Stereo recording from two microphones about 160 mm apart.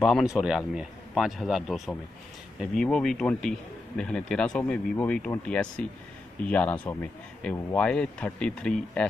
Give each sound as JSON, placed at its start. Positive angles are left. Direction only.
{"t": 0.0, "sound": "a man's voice", "side_deg": 0}